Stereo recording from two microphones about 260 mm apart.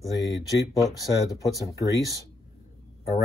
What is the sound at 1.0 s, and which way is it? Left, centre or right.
Speech, centre.